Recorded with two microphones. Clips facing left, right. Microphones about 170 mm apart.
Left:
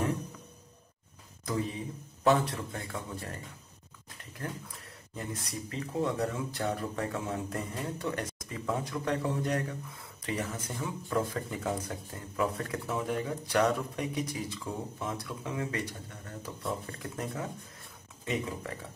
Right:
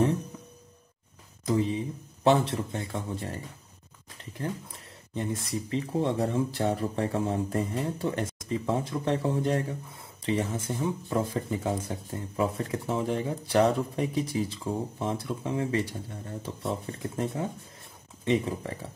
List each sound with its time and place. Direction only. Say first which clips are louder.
1.4 s speech: right 7 dB; 25° right (ahead or behind)
5.1 s speech: right 7 dB; 25° right (ahead or behind)